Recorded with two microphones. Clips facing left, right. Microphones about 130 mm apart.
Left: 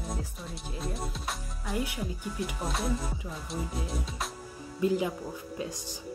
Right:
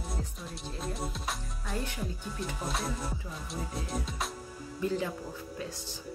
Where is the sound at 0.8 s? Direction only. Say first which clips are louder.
Even; centre (ahead or behind).